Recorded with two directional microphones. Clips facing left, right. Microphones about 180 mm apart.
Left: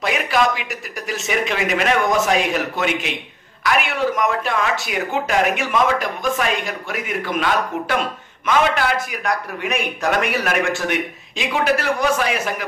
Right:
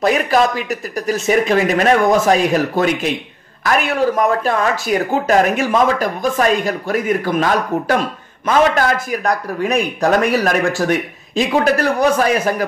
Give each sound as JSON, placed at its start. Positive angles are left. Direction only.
{"t": 0.0, "sound": "speech", "side_deg": -40}